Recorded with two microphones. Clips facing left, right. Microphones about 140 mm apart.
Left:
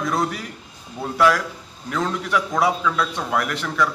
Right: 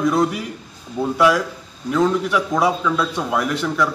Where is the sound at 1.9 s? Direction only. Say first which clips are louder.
Right 5 dB; 5° right (ahead or behind).